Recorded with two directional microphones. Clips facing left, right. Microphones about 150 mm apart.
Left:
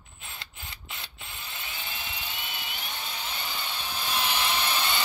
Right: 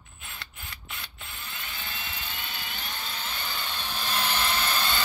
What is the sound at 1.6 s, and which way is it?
Helicopter, 20° left (ahead or behind).